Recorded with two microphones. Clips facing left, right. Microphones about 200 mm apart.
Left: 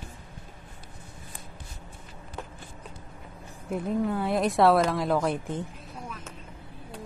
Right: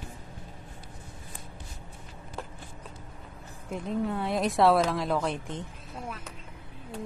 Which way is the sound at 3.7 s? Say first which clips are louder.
Left 3 dB; 5° left (ahead or behind).